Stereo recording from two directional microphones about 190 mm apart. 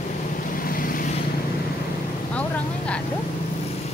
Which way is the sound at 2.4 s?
5° left (ahead or behind).